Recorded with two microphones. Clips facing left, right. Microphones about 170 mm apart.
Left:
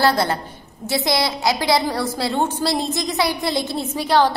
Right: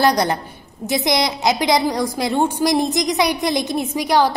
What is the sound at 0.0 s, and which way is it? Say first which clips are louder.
A woman's voice: right 2 dB; 15° right (ahead or behind).